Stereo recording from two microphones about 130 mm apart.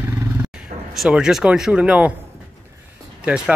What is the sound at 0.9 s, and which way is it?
Speech, 5° right (ahead or behind).